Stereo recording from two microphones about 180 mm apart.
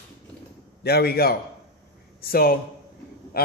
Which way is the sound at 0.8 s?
60° left (ahead or behind).